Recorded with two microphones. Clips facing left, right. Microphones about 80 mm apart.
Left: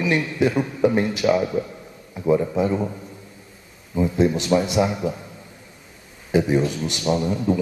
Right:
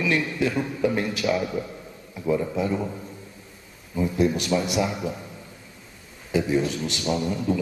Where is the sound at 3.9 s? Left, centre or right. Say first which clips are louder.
Left 3 dB; left.